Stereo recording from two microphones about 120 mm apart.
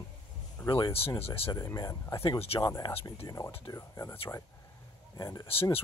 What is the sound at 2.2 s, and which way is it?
Speech, 50° left (ahead or behind).